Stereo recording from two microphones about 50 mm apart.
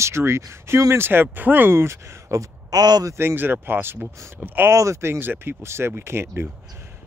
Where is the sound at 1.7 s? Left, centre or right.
Right.